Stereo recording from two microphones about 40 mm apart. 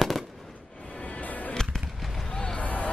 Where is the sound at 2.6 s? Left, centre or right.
Left.